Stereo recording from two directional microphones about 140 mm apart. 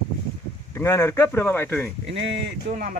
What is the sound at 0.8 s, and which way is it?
Speech, 20° left (ahead or behind).